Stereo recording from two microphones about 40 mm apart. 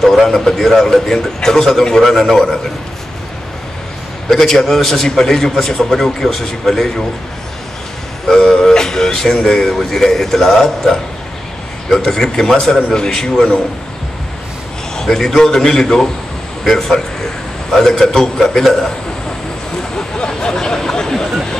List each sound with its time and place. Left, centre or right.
0.0 s speech: centre
4.3 s speech: centre
8.3 s speech: centre
15.0 s speech: centre
16.6 s a man's voice: centre
20.2 s a sound: left